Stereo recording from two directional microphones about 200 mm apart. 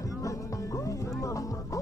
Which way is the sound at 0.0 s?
15° left (ahead or behind).